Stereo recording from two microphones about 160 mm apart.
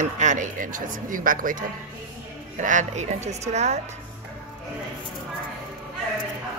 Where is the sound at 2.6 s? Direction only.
50° right (ahead or behind).